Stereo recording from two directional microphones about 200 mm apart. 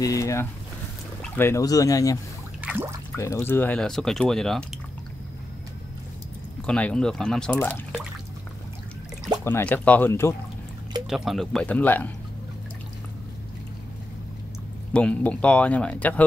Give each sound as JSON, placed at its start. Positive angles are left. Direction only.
{"t": 0.0, "sound": "speech", "side_deg": 15}
{"t": 2.6, "sound": "a sound", "side_deg": -10}
{"t": 3.2, "sound": "speech", "side_deg": 10}
{"t": 6.6, "sound": "speech", "side_deg": 5}
{"t": 9.4, "sound": "speech", "side_deg": 10}
{"t": 11.1, "sound": "speech", "side_deg": 0}
{"t": 14.9, "sound": "speech", "side_deg": 5}